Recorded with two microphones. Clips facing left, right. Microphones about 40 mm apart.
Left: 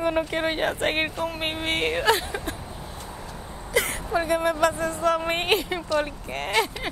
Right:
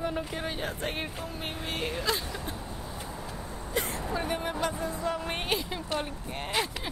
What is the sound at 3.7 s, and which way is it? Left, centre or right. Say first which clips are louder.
Vehicle: left 7 dB; left.